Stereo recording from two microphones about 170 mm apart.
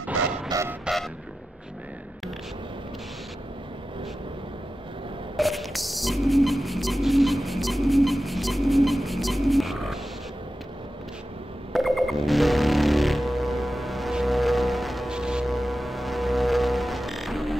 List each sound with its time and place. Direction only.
0.0 s music: 5° right (ahead or behind)
0.5 s music: 15° right (ahead or behind)
5.4 s music: centre (ahead or behind)
11.7 s music: centre (ahead or behind)